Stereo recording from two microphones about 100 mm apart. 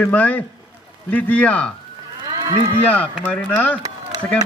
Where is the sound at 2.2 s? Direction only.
40° right (ahead or behind).